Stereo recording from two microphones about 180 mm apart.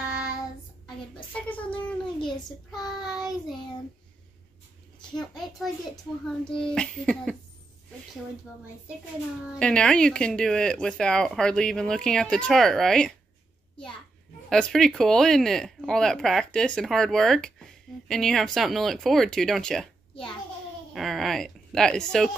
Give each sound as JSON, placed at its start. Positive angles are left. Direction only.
{"t": 1.7, "sound": "a sound", "side_deg": 25}
{"t": 2.7, "sound": "child singing", "side_deg": 0}
{"t": 5.1, "sound": "speech", "side_deg": 0}
{"t": 9.6, "sound": "speech", "side_deg": 5}
{"t": 14.5, "sound": "speech", "side_deg": 5}